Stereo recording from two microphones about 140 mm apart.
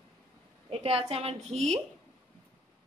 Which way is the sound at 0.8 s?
45° right (ahead or behind).